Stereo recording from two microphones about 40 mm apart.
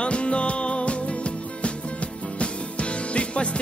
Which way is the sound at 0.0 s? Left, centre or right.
Left.